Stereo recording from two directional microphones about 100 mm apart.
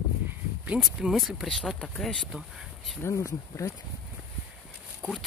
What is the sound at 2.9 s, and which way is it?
Speech, 30° left (ahead or behind).